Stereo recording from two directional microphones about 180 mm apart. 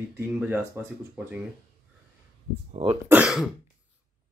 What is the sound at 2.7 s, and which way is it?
Speech, 30° right (ahead or behind).